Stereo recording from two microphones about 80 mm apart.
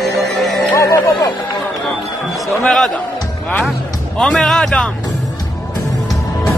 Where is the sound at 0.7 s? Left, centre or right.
Left.